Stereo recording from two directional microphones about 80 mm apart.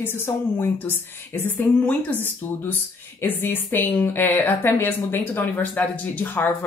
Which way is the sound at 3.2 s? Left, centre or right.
Left.